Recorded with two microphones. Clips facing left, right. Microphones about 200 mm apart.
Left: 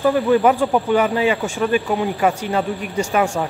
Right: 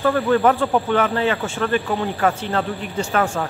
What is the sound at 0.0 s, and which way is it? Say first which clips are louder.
Speech: left 2 dB; 10° left (ahead or behind).